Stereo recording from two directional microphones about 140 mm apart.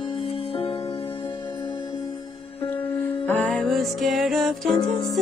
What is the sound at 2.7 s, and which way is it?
Music, 10° left (ahead or behind).